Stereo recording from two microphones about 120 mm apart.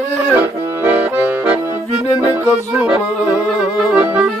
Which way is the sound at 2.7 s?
10° right (ahead or behind).